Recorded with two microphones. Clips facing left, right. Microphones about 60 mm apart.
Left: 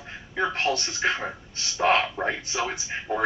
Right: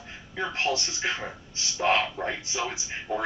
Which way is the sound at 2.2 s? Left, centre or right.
Centre.